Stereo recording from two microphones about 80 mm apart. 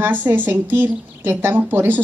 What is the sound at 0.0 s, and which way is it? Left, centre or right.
A woman's voice, right.